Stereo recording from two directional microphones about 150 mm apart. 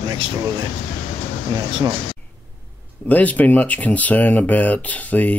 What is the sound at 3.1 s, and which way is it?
Speech, 10° left (ahead or behind).